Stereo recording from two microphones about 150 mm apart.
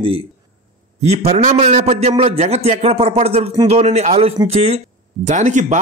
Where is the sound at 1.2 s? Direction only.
45° right (ahead or behind).